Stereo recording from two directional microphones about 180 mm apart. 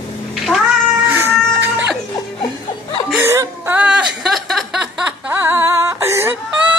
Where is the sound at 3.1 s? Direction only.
15° right (ahead or behind).